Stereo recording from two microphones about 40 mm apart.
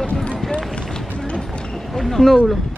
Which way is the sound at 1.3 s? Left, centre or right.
Left.